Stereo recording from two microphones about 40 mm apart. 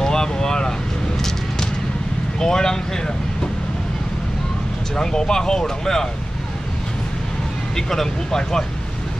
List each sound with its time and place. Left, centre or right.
0.0 s a sound: centre
2.4 s speech: centre
4.9 s speech: centre
7.7 s speech: centre